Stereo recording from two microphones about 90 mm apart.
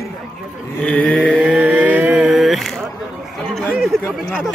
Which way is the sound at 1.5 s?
15° right (ahead or behind).